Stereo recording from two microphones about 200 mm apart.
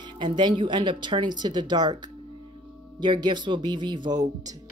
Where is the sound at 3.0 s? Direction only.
20° right (ahead or behind).